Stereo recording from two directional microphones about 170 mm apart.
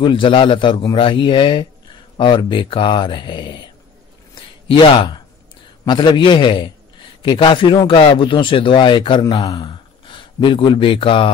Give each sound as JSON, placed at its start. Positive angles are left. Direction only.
{"t": 0.0, "sound": "speech", "side_deg": 30}
{"t": 4.4, "sound": "a sound", "side_deg": 30}
{"t": 5.9, "sound": "speech", "side_deg": 30}